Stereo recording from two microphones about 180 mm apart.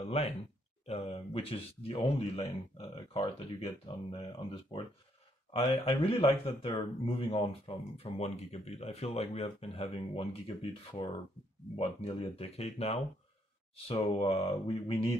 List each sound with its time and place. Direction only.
0.0 s speech: 35° left (ahead or behind)